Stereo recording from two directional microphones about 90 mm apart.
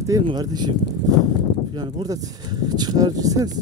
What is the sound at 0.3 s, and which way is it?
Speech, 50° right (ahead or behind).